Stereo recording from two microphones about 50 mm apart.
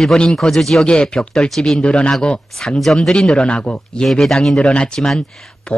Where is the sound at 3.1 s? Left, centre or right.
Centre.